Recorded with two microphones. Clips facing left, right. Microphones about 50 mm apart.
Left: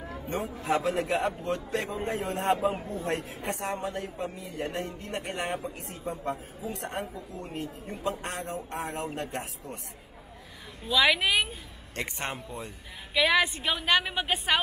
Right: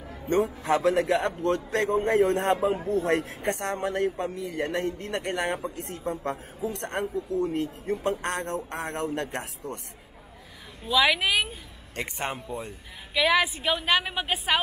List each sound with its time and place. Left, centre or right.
0.3 s speech: right
10.9 s a woman's voice: centre